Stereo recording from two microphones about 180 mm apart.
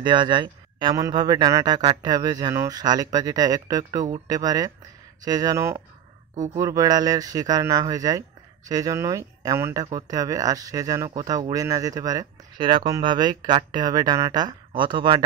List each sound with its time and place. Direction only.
0.0 s speech: 25° right (ahead or behind)